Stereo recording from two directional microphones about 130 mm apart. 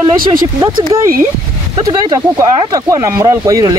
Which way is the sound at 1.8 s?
30° right (ahead or behind).